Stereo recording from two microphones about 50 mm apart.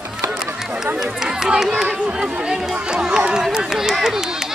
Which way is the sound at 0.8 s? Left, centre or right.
Centre.